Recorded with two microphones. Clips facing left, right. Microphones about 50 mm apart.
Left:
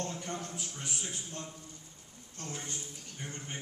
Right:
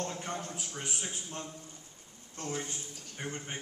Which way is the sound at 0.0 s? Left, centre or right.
Right.